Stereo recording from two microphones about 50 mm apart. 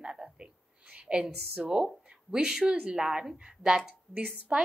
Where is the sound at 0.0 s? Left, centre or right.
Centre.